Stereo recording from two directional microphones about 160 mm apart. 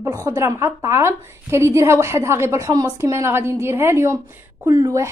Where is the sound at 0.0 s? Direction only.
20° right (ahead or behind).